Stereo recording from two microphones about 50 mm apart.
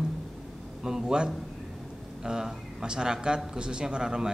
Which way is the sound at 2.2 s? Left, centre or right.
Centre.